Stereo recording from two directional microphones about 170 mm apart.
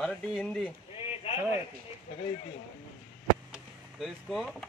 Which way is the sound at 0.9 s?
30° left (ahead or behind).